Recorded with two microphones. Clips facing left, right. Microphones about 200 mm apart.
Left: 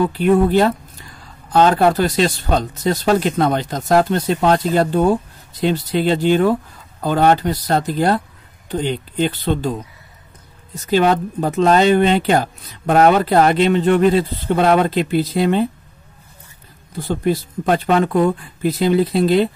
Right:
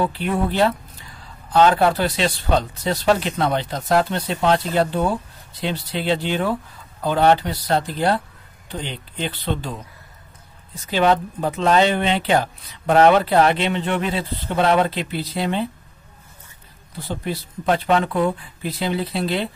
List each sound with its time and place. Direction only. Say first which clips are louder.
0.0 s speech: left 7 dB; 45° left (ahead or behind)
10.7 s speech: left 3 dB; 45° left (ahead or behind)
17.1 s speech: left 8 dB; 45° left (ahead or behind)